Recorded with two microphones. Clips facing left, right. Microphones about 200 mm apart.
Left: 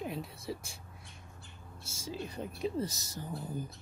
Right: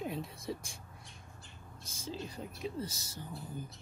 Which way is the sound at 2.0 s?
10° left (ahead or behind).